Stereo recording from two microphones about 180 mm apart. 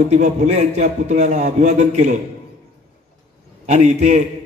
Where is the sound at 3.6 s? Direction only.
40° right (ahead or behind).